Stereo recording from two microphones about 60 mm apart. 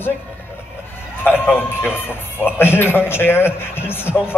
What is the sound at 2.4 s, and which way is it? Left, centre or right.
A man's voice, left.